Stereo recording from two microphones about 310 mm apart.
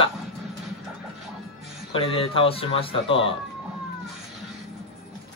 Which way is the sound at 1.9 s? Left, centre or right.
Centre.